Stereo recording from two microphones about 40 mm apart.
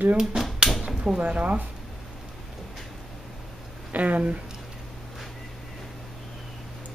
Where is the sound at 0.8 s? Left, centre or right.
Centre.